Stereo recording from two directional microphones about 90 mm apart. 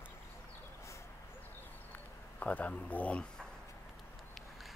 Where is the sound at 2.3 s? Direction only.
15° left (ahead or behind).